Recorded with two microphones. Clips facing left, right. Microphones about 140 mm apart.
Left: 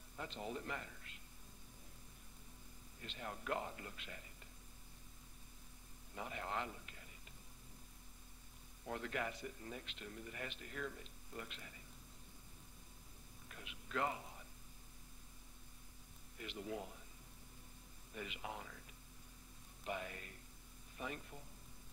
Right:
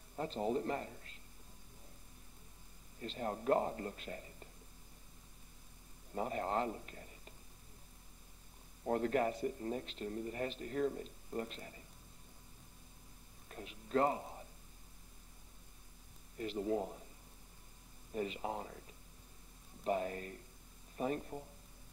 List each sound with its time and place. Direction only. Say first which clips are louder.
0.1 s a man's voice: right 10 dB; 40° right (ahead or behind)
3.0 s a man's voice: right 9 dB; 35° right (ahead or behind)
6.1 s a man's voice: right 8 dB; 40° right (ahead or behind)
8.8 s a man's voice: right 10 dB; 40° right (ahead or behind)
13.5 s speech: right 10 dB; 35° right (ahead or behind)
16.3 s a man's voice: right 10 dB; 35° right (ahead or behind)
18.1 s a man's voice: right 9 dB; 35° right (ahead or behind)